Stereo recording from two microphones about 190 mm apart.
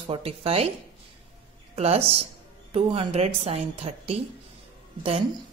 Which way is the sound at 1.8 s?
30° right (ahead or behind).